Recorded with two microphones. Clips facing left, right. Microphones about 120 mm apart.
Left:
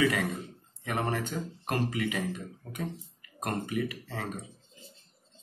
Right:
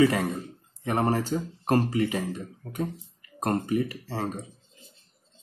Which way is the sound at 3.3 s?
35° right (ahead or behind).